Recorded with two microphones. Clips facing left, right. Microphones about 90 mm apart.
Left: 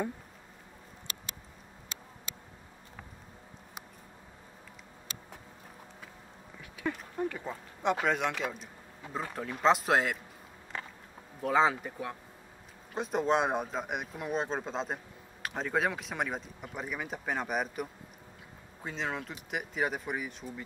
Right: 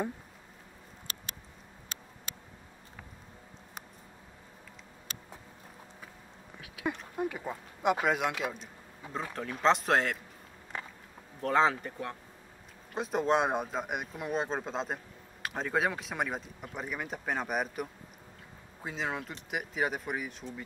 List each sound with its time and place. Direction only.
7.2 s speech: 10° right (ahead or behind)
10.7 s a sound: 20° right (ahead or behind)
11.4 s speech: 5° left (ahead or behind)